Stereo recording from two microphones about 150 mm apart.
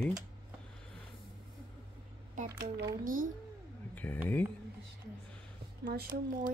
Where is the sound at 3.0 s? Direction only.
70° right (ahead or behind).